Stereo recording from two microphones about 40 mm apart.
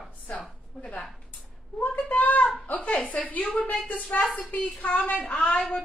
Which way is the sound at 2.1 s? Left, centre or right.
Left.